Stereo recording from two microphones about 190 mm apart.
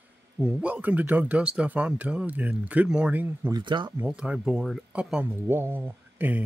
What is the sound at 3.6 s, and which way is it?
Speech, 25° right (ahead or behind).